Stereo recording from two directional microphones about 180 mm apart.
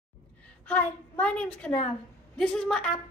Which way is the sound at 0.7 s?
10° left (ahead or behind).